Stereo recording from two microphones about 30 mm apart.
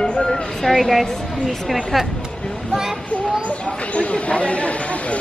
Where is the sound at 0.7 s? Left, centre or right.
Centre.